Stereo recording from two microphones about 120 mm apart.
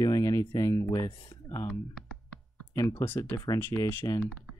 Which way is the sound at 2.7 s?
30° left (ahead or behind).